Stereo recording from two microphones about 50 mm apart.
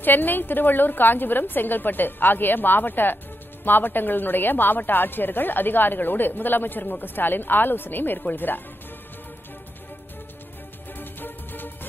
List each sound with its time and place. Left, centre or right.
0.0 s speech: left
10.9 s music: left